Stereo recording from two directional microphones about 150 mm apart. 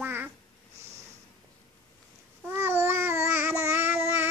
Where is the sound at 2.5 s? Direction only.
15° right (ahead or behind).